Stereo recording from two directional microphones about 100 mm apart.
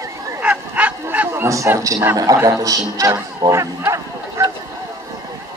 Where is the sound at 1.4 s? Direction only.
30° right (ahead or behind).